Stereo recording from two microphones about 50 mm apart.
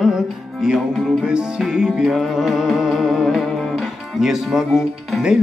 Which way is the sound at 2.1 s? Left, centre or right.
Centre.